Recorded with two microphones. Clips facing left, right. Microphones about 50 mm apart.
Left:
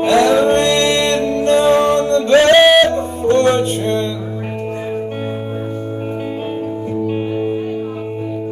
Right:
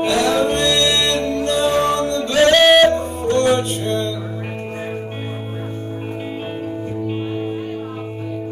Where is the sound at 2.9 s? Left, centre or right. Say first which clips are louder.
Left 4 dB; left.